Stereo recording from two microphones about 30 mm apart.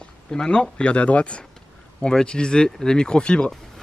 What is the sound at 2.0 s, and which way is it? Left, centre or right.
Speech, left.